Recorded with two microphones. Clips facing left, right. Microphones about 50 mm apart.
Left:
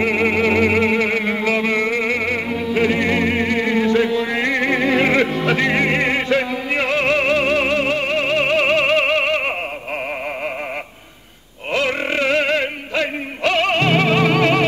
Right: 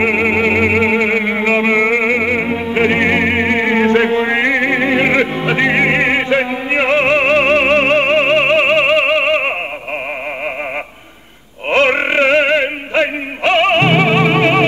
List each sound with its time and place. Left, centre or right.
0.0 s music: right
11.7 s music: right